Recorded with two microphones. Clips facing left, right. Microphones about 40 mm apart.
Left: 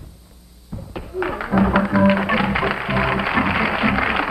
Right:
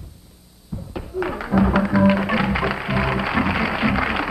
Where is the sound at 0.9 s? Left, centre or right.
Centre.